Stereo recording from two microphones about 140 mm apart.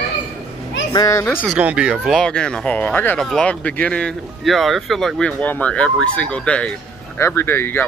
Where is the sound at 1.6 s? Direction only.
10° right (ahead or behind).